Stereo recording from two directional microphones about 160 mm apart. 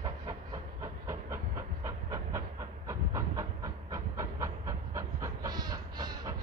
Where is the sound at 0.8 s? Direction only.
20° right (ahead or behind).